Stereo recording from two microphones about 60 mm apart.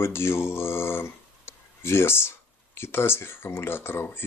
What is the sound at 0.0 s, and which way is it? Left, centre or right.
Speech, left.